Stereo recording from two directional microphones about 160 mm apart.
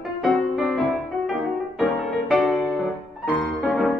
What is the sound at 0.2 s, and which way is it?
Music, centre (ahead or behind).